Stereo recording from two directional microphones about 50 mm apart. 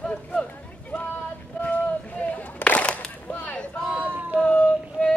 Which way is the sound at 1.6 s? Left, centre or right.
Left.